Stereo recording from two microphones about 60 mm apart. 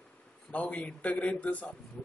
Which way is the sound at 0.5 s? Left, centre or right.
Left.